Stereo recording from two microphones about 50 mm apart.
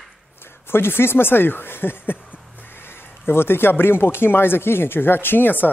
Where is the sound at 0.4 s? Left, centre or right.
Left.